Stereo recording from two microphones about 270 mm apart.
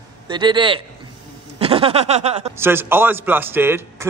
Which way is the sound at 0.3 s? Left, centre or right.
Centre.